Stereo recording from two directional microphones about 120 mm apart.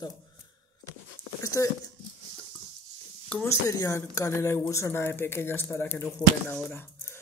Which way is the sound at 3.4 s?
30° left (ahead or behind).